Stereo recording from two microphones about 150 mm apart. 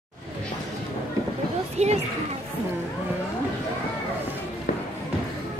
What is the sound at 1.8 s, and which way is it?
Speech, 45° right (ahead or behind).